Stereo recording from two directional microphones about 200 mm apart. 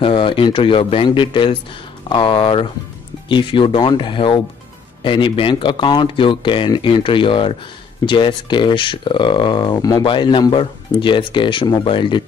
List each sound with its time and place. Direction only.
0.0 s speech: 25° left (ahead or behind)